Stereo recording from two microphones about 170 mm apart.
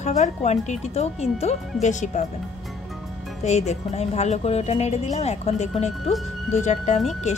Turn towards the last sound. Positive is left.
turn(degrees=45)  # may be behind; listen again after turning